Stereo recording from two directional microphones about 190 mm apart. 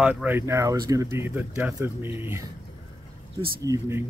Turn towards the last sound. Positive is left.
turn(degrees=-15)  # may be behind; listen again after turning